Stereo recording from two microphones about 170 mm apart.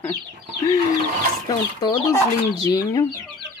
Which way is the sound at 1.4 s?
25° left (ahead or behind).